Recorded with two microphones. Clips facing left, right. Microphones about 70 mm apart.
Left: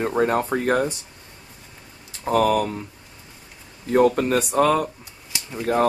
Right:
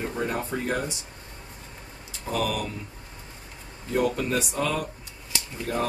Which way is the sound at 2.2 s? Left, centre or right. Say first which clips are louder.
Left 9 dB; left.